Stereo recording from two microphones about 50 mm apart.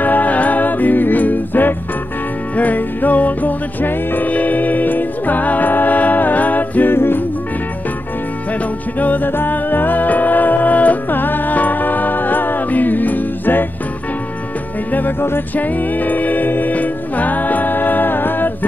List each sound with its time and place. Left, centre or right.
0.0 s music: left
6.9 s music: left
9.0 s music: left
14.9 s music: left